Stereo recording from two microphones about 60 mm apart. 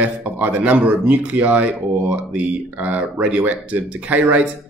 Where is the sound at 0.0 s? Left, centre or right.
Right.